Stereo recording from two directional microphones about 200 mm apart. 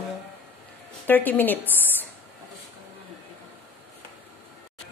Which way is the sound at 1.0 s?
10° left (ahead or behind).